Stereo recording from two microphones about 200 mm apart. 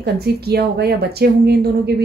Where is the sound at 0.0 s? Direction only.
55° right (ahead or behind).